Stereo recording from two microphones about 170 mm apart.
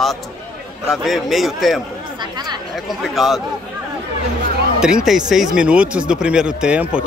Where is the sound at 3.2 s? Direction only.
Centre (ahead or behind).